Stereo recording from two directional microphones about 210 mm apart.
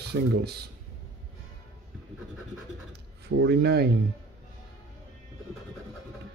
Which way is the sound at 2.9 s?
55° right (ahead or behind).